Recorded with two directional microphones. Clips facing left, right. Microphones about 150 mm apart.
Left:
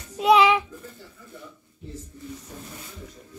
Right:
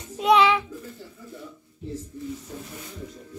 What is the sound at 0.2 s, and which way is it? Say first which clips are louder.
Child singing: left 1 dB; 10° left (ahead or behind).